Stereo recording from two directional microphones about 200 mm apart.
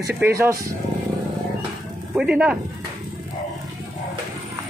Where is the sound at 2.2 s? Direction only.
5° right (ahead or behind).